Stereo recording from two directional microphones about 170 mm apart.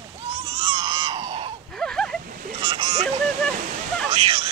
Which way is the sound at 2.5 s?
30° right (ahead or behind).